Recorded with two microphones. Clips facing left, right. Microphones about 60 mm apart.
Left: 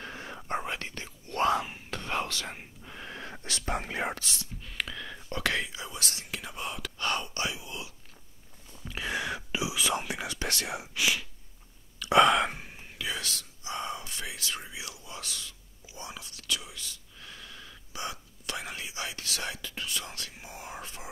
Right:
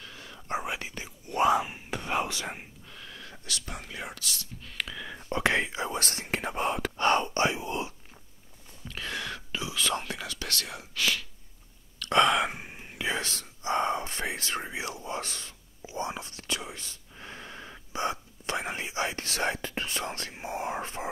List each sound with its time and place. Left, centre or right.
0.0 s whispering: left
0.5 s whispering: centre
2.8 s whispering: left
4.6 s a sound: centre
5.3 s whispering: right
8.8 s whispering: centre
12.0 s sigh: centre
12.5 s whispering: centre; by 21.1 s right